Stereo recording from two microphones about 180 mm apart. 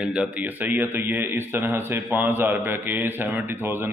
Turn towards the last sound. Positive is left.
turn(degrees=-10)  # may be behind; listen again after turning